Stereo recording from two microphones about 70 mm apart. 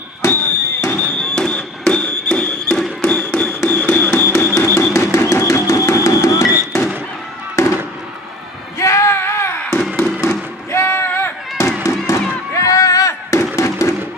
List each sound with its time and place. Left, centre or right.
0.2 s fireworks: left
0.9 s fireworks: centre
4.2 s music: left
7.6 s fireworks: left
8.7 s a sound: left
12.1 s fireworks: left
12.5 s a sound: left